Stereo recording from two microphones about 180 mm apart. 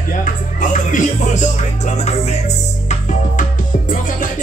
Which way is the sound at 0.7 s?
45° left (ahead or behind).